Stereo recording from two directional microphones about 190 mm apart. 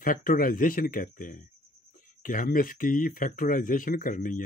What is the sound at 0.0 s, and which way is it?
Speech, 45° left (ahead or behind).